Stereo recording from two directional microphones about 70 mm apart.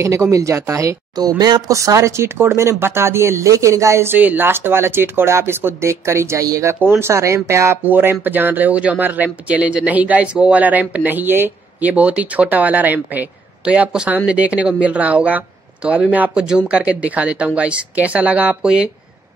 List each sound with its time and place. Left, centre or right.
0.0 s speech: right
1.1 s speech: right
1.7 s speech: right
4.2 s speech: right
6.4 s speech: right
6.7 s speech: right
7.8 s speech: right